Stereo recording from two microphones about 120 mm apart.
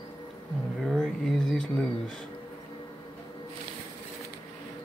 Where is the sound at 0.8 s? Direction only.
Centre (ahead or behind).